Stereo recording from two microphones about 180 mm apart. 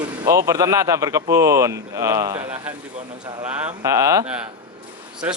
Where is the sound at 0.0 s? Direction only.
20° right (ahead or behind).